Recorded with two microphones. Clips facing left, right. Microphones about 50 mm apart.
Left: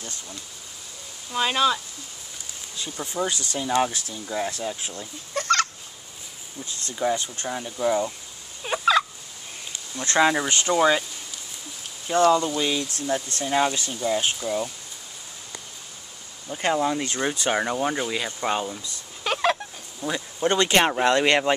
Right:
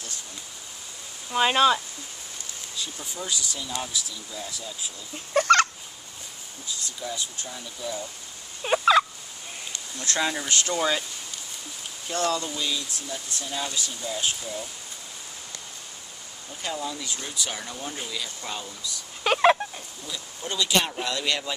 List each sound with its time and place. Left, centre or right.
1.3 s speech: centre
2.8 s speech: left
5.3 s fowl: right
6.6 s speech: left
8.6 s turkey: centre
9.9 s speech: left
12.3 s speech: left
12.9 s speech: left
16.5 s speech: left
19.2 s a sound: centre
20.0 s speech: left